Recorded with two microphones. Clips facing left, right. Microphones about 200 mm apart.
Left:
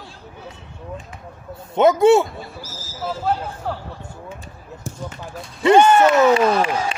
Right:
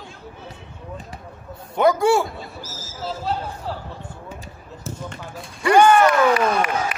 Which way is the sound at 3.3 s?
50° left (ahead or behind).